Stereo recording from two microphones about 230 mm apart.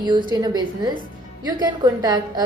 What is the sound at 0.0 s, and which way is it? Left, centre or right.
A woman's voice, right.